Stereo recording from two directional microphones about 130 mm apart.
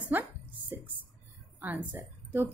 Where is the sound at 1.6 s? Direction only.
10° right (ahead or behind).